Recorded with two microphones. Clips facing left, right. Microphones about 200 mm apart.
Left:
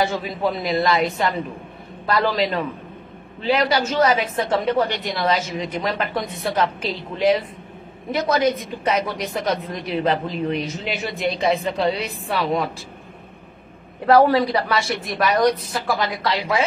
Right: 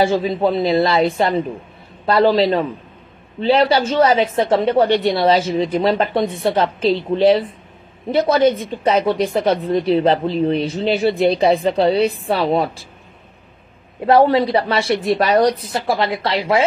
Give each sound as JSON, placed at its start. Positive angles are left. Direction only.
{"t": 0.0, "sound": "a woman's voice", "side_deg": -30}
{"t": 14.0, "sound": "a woman's voice", "side_deg": -25}